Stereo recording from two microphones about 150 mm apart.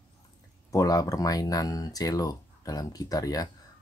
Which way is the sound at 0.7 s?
25° left (ahead or behind).